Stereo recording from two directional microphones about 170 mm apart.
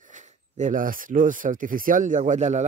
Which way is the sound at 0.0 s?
45° right (ahead or behind).